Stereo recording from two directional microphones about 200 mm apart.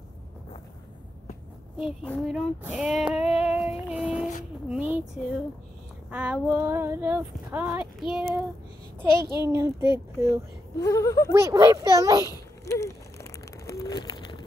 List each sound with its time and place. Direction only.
1.8 s speech: centre (ahead or behind)
3.2 s female singing: 5° right (ahead or behind)
4.6 s speech: 5° right (ahead or behind)
6.0 s child singing: 5° right (ahead or behind)
9.5 s child singing: 15° right (ahead or behind)
10.8 s a sound: 15° left (ahead or behind)
11.3 s child singing: 15° right (ahead or behind)
12.3 s a sound: 15° left (ahead or behind)